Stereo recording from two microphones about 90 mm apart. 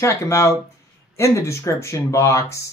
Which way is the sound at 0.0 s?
35° left (ahead or behind).